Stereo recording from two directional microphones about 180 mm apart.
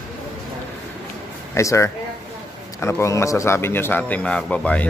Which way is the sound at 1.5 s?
15° left (ahead or behind).